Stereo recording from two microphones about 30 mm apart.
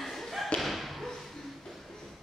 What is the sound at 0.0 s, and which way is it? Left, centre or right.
Thump, centre.